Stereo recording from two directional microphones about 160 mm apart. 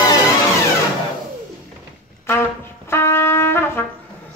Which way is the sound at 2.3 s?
15° left (ahead or behind).